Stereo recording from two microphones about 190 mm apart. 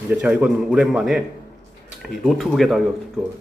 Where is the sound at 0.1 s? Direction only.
5° right (ahead or behind).